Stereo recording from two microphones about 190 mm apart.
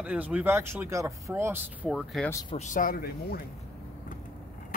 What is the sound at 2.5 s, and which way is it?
Speech, 40° left (ahead or behind).